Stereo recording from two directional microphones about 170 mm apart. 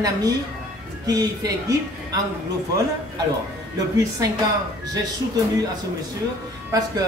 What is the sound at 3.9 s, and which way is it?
Speech, 20° right (ahead or behind).